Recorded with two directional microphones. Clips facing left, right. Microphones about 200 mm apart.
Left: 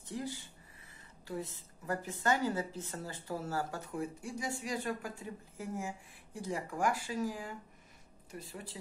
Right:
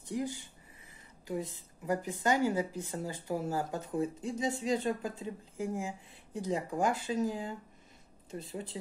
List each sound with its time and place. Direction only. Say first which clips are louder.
0.0 s a woman's voice: right 5 dB; 15° right (ahead or behind)